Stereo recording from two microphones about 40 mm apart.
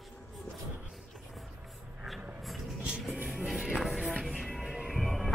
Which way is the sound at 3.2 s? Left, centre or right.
Centre.